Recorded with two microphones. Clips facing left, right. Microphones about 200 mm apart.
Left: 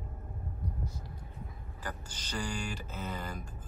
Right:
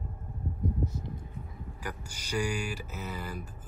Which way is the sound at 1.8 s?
10° right (ahead or behind).